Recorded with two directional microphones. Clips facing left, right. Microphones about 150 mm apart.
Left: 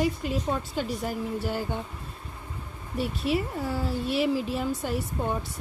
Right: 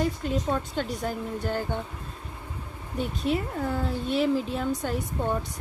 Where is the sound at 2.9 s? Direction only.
5° left (ahead or behind).